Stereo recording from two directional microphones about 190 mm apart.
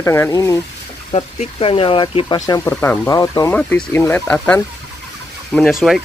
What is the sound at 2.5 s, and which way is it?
Speech, 15° left (ahead or behind).